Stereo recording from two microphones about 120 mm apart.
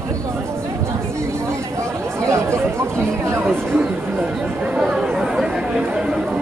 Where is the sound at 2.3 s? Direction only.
25° right (ahead or behind).